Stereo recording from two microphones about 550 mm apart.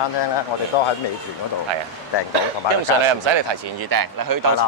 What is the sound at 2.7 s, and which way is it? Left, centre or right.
Speech, right.